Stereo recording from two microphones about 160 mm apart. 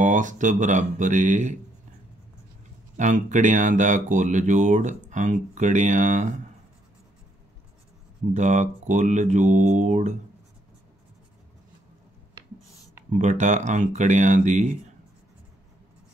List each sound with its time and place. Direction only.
0.0 s speech: 55° right (ahead or behind)
3.0 s speech: 50° right (ahead or behind)
8.3 s speech: 50° right (ahead or behind)
13.1 s speech: 50° right (ahead or behind)